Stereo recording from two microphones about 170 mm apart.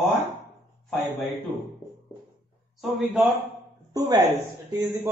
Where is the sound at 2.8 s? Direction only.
Centre (ahead or behind).